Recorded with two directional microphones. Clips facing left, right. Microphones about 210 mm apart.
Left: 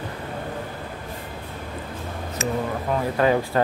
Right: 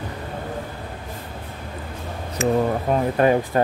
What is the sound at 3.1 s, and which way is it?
Speech, 20° right (ahead or behind).